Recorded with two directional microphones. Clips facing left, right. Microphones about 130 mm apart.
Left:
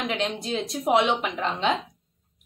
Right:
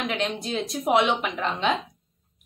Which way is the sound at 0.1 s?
25° left (ahead or behind).